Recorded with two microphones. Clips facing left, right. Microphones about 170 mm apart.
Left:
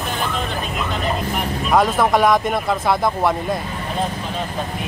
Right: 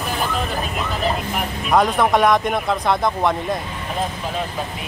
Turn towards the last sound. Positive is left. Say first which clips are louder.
# left 1 dB
turn(degrees=5)  # may be behind; listen again after turning